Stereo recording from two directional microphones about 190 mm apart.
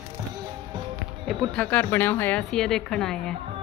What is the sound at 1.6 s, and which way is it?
A woman's voice, 10° left (ahead or behind).